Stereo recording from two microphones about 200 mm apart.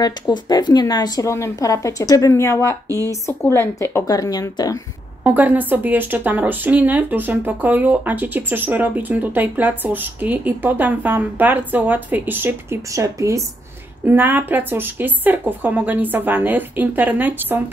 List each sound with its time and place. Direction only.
0.0 s speech: 20° left (ahead or behind)
5.2 s a woman's voice: 10° right (ahead or behind)